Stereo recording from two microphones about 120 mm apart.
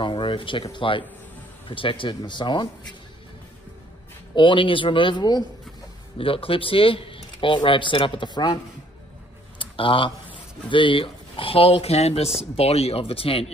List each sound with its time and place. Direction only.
0.0 s speech: 45° left (ahead or behind)
4.4 s speech: 45° left (ahead or behind)
6.1 s speech: 50° left (ahead or behind)
9.6 s a sound: 45° left (ahead or behind)
10.7 s speech: 45° left (ahead or behind)